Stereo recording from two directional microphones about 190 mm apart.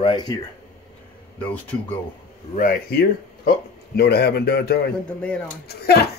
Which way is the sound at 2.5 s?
45° left (ahead or behind).